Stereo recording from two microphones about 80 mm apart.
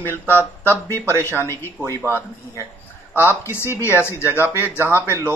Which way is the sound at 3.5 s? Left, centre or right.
Left.